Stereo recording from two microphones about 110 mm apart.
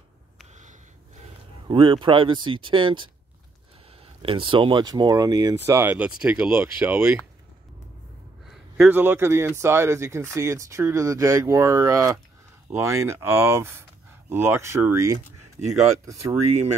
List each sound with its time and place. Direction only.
1.7 s speech: 50° right (ahead or behind); by 5.9 s 30° right (ahead or behind)
5.9 s speech: 10° right (ahead or behind)
8.7 s speech: 15° right (ahead or behind)